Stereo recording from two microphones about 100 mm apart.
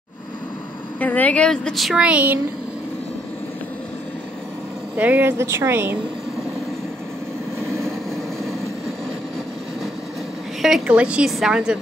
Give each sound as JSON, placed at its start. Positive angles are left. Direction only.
{"t": 0.9, "sound": "speech", "side_deg": 15}
{"t": 2.0, "sound": "a woman's voice", "side_deg": -15}
{"t": 4.9, "sound": "speech", "side_deg": -15}
{"t": 10.9, "sound": "a woman's voice", "side_deg": -10}